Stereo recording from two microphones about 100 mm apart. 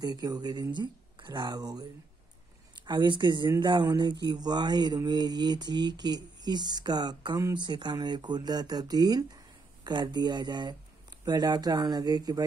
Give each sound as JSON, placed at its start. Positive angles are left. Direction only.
{"t": 0.0, "sound": "speech", "side_deg": -40}